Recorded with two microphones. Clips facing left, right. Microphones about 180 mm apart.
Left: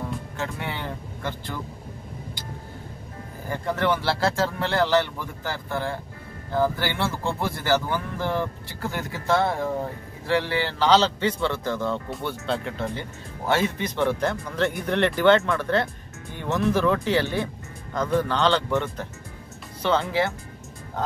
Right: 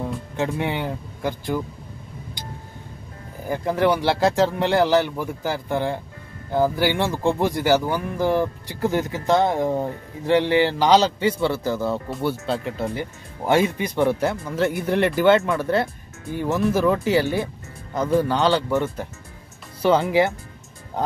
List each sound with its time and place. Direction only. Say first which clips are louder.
0.4 s speech: right 9 dB; 20° right (ahead or behind)
3.4 s speech: right 5 dB; 10° right (ahead or behind)